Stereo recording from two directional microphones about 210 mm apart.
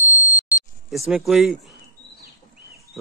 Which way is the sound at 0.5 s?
5° right (ahead or behind).